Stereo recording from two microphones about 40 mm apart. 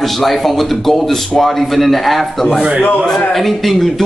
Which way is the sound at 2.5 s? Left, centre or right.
Right.